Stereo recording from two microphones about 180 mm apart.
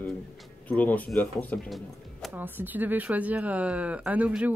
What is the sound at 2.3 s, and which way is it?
Speech, 10° right (ahead or behind).